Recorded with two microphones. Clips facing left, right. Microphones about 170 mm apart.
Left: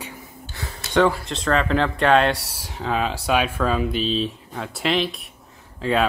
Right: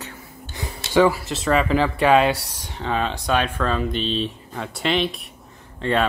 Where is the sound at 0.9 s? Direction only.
5° right (ahead or behind).